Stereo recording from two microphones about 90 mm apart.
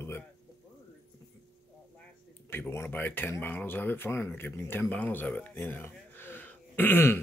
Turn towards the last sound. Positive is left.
turn(degrees=25)  # may be behind; listen again after turning